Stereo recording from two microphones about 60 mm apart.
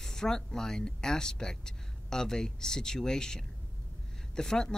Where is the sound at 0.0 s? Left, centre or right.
Centre.